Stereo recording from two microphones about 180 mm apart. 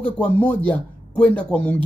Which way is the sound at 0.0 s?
10° left (ahead or behind).